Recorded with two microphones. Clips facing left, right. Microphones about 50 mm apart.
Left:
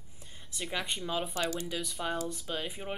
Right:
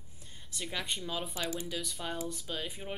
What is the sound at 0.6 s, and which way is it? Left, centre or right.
Speech, centre.